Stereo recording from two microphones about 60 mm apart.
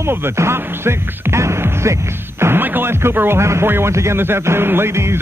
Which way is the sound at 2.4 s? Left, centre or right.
Right.